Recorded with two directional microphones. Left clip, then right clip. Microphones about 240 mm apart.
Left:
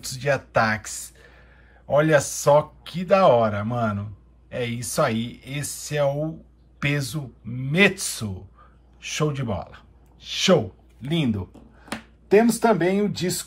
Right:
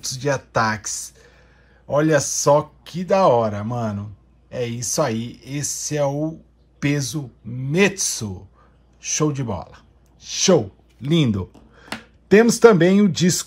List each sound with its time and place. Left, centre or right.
0.0 s speech: centre
11.1 s speech: right